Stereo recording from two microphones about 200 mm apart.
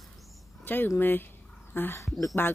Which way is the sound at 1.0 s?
10° left (ahead or behind).